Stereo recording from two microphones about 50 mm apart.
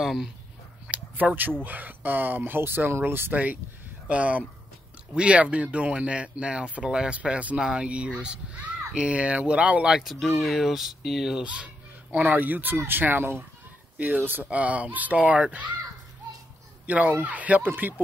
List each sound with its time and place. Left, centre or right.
0.0 s speech: centre
0.8 s a sound: right
1.6 s speech: right
4.1 s speech: right
9.8 s speech: centre
10.1 s speech: centre
10.7 s speech: centre
11.4 s a sound: right
12.3 s speech: right
13.9 s speech: right
16.8 s speech: right